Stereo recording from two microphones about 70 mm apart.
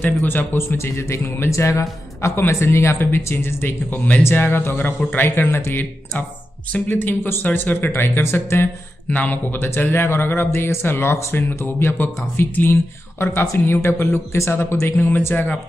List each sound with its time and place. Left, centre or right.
0.2 s speech: left